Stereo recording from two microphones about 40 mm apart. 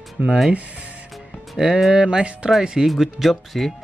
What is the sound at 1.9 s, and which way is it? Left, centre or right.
Music, centre.